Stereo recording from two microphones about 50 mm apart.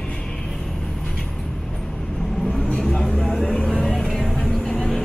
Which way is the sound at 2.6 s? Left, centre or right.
Centre.